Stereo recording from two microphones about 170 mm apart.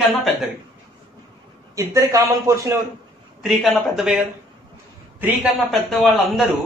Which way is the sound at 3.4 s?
Centre (ahead or behind).